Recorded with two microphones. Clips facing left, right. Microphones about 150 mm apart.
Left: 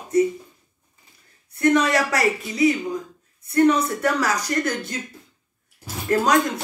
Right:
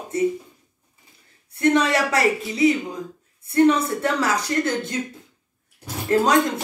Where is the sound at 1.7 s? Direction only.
25° right (ahead or behind).